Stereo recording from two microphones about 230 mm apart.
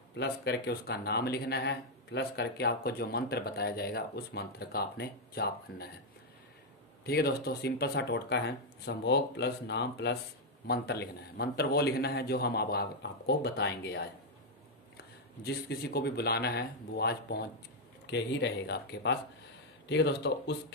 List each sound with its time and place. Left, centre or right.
0.1 s speech: left
7.1 s speech: left
15.4 s speech: left